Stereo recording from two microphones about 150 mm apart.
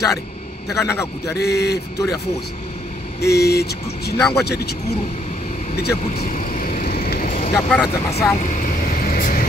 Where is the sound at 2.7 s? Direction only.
50° left (ahead or behind).